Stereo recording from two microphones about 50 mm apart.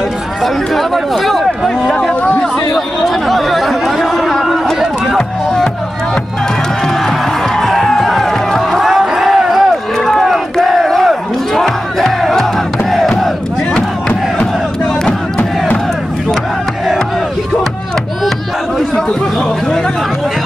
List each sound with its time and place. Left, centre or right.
0.4 s speech: centre
3.0 s chatter: centre
7.6 s a sound: centre
10.2 s battle cry: centre
15.0 s crowd: left